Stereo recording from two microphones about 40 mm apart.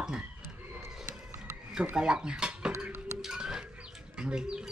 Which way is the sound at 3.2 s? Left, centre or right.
Centre.